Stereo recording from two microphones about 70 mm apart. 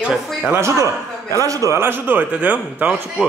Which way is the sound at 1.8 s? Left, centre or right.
Right.